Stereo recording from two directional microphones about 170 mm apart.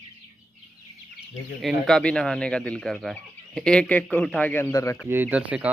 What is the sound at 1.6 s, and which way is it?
Speech, centre (ahead or behind).